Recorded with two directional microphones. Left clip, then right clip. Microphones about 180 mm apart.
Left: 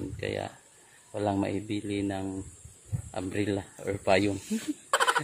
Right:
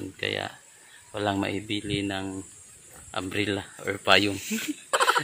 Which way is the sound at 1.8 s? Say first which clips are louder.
Right 2 dB; 5° left (ahead or behind).